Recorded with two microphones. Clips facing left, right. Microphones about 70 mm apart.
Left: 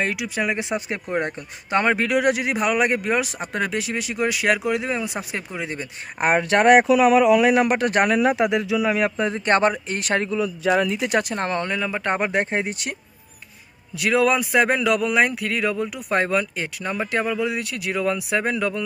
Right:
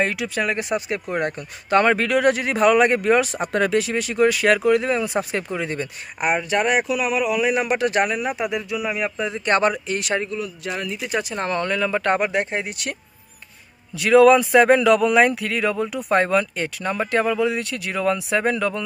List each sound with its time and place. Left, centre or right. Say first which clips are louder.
0.1 s speech: right 1 dB; centre
0.7 s speech: right 2 dB; left
1.1 s speech: left 2 dB; centre
6.5 s speech: left 8 dB; left
7.2 s speech: left 5 dB; left
7.5 s speech: left 1 dB; left
8.1 s speech: left 5 dB; left
9.2 s speech: right 1 dB; left
10.9 s speech: left 3 dB; left
11.3 s speech: even; left
11.6 s speech: right 3 dB; centre
12.2 s speech: even; left
13.9 s speech: right 6 dB; centre